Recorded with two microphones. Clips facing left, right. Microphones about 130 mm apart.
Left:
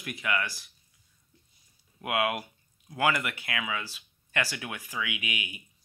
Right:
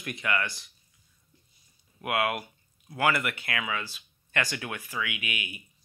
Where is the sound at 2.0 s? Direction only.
15° left (ahead or behind).